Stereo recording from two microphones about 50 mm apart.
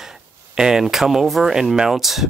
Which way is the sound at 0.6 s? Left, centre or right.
Centre.